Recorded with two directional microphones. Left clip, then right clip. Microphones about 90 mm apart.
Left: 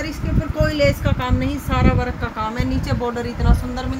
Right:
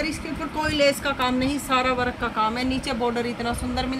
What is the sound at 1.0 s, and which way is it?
Speech, 50° right (ahead or behind).